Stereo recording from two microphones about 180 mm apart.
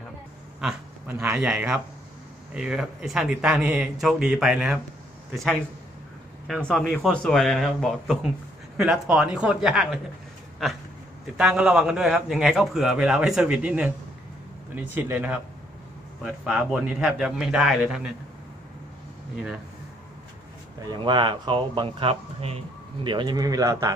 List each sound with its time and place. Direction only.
0.6 s a sound: 5° right (ahead or behind)
1.1 s a man's voice: 15° right (ahead or behind)
6.7 s a man's voice: centre (ahead or behind)
11.3 s a man's voice: 5° right (ahead or behind)
19.3 s a man's voice: 5° right (ahead or behind)
20.8 s speech: 25° right (ahead or behind)